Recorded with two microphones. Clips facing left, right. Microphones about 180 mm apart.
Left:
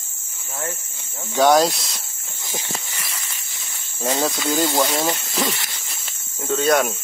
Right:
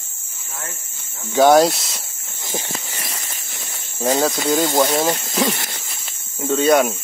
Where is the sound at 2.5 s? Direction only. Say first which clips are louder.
Right 3 dB; 35° right (ahead or behind).